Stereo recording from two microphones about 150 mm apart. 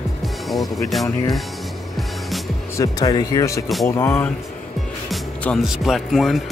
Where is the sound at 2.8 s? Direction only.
25° left (ahead or behind).